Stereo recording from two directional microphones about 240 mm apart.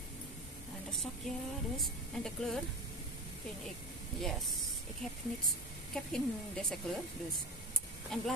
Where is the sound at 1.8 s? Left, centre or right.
Centre.